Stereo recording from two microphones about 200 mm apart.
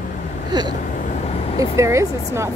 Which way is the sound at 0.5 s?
20° right (ahead or behind).